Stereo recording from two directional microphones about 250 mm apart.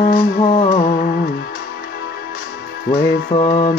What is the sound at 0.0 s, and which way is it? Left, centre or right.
Music, left.